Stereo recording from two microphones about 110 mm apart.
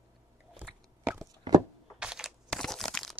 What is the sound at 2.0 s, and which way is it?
Crushing, 5° right (ahead or behind).